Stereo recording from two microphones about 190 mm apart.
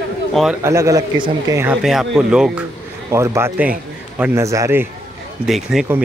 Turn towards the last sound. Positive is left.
turn(degrees=0)  # may be behind; listen again after turning